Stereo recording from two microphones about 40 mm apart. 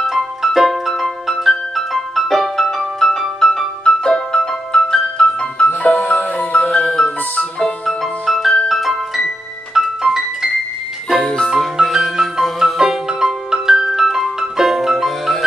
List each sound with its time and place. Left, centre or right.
0.0 s music: centre; by 5.7 s left
5.7 s music: left
7.0 s music: centre
11.9 s music: centre
12.7 s music: centre